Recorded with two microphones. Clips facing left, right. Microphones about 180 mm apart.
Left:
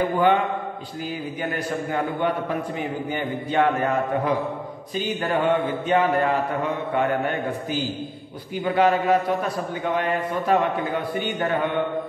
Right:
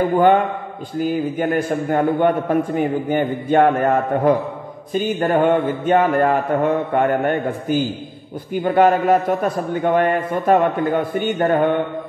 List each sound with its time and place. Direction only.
1.0 s a man's voice: 50° right (ahead or behind)